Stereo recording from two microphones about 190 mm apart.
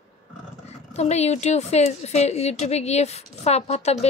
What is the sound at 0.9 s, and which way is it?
A woman's voice, 35° left (ahead or behind).